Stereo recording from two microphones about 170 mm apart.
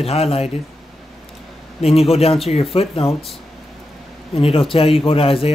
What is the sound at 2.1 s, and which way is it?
A man's voice, 35° left (ahead or behind).